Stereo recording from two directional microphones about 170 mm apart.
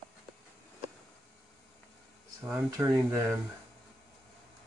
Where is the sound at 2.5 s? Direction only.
20° right (ahead or behind).